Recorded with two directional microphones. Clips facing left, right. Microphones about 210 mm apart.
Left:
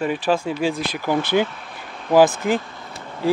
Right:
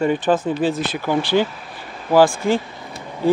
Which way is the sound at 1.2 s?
20° left (ahead or behind).